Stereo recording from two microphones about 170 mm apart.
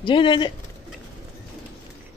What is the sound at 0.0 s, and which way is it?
Speech, 30° left (ahead or behind).